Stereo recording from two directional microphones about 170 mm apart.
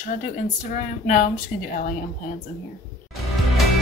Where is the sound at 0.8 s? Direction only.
45° left (ahead or behind).